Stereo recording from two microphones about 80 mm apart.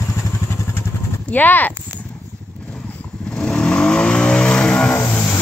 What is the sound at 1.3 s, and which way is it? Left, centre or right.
Speech, left.